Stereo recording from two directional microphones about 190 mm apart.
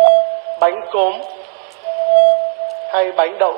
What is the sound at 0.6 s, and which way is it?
Speech, 50° right (ahead or behind).